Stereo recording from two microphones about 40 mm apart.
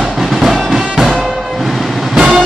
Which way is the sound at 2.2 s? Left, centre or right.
Centre.